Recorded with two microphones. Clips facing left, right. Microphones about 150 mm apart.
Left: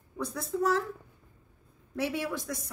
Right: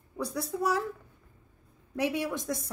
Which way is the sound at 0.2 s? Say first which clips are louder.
Left 1 dB; 10° right (ahead or behind).